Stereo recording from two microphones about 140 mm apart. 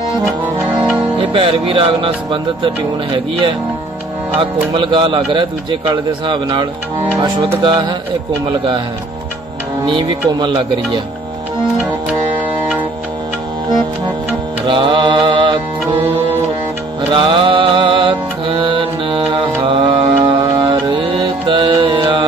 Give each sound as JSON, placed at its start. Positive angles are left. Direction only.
{"t": 1.1, "sound": "a man's voice", "side_deg": -40}
{"t": 4.4, "sound": "a man's voice", "side_deg": -35}
{"t": 9.8, "sound": "a man's voice", "side_deg": -35}
{"t": 14.7, "sound": "mantra", "side_deg": -35}
{"t": 15.9, "sound": "music", "side_deg": -45}